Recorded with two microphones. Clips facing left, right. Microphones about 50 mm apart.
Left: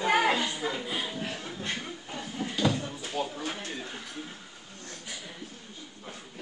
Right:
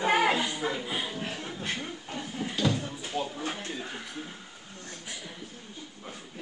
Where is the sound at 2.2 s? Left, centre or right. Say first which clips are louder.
Even; centre.